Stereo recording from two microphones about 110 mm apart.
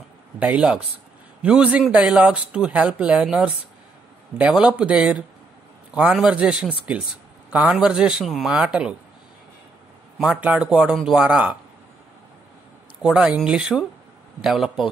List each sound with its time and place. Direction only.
0.4 s speech: 10° right (ahead or behind)
10.1 s speech: centre (ahead or behind)
13.0 s speech: 10° right (ahead or behind)